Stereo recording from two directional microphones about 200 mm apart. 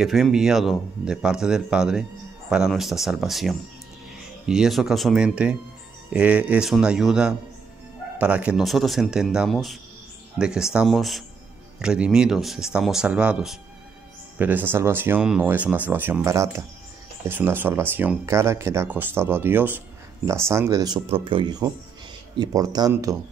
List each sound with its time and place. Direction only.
0.0 s speech: centre (ahead or behind); by 23.1 s 15° right (ahead or behind)